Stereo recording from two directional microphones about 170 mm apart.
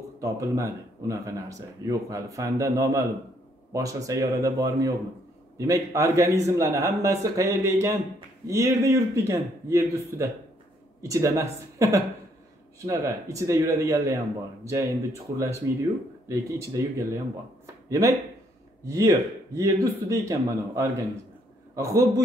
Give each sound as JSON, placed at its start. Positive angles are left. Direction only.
{"t": 0.2, "sound": "a man's voice", "side_deg": -15}